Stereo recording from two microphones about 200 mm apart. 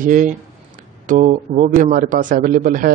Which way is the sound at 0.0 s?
40° right (ahead or behind).